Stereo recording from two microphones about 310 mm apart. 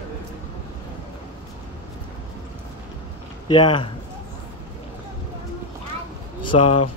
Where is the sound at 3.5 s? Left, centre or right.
Centre.